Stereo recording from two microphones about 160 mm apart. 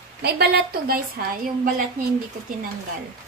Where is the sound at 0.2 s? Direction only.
90° right; by 1.7 s 65° right (ahead or behind).